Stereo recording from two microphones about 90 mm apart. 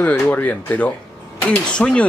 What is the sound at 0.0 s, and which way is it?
Speech, 20° left (ahead or behind).